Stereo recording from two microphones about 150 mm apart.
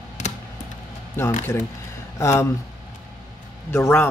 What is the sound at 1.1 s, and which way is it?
Speech, 15° left (ahead or behind).